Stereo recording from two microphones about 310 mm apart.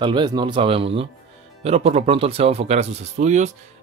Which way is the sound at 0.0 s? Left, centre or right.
Centre.